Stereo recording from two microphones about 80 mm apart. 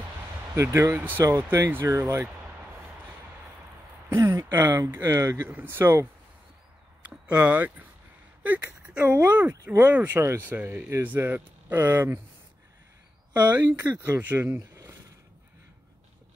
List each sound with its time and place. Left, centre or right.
0.6 s speech: right
0.9 s speech: right
1.2 s speech: right
1.9 s speech: right
4.4 s a sound: right
4.7 s speech: right
5.5 s speech: right
7.2 s speech: right
13.3 s speech: right